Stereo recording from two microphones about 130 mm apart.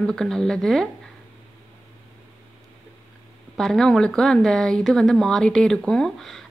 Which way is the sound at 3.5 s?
5° left (ahead or behind).